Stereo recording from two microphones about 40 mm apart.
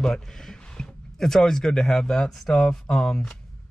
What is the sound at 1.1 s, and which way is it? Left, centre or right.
Speech, centre.